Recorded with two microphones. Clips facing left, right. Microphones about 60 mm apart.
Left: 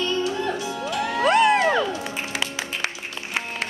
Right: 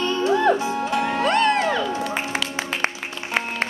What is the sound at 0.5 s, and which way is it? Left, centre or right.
Music, right.